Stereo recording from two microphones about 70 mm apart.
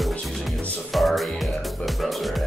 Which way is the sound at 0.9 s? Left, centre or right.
Centre.